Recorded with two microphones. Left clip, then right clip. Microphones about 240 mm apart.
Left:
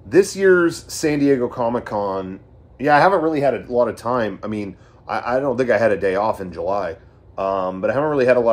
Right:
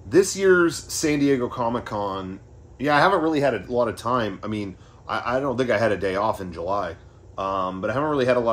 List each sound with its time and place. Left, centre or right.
0.4 s speech: centre
3.3 s speech: right
3.7 s speech: centre